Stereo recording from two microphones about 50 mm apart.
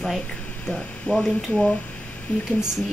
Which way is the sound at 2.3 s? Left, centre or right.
Left.